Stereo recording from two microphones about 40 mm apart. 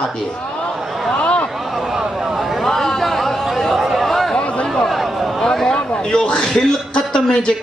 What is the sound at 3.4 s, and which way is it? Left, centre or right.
Chatter, centre.